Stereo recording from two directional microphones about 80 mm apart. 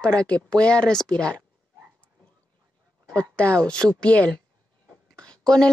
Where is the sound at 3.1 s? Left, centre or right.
Centre.